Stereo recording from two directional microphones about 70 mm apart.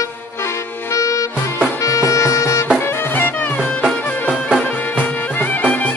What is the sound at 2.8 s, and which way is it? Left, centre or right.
Music, left.